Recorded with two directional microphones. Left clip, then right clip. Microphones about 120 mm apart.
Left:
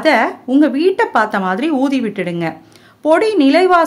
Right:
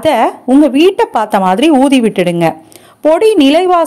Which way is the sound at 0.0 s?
50° right (ahead or behind).